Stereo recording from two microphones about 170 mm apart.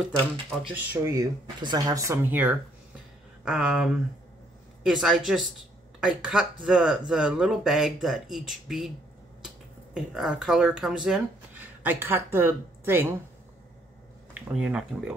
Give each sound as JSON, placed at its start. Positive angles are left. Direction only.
{"t": 0.7, "sound": "speech", "side_deg": -15}
{"t": 9.9, "sound": "speech", "side_deg": 0}
{"t": 14.5, "sound": "speech", "side_deg": -5}